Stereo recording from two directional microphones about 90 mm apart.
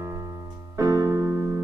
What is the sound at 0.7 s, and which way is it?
Keyboard, 40° right (ahead or behind).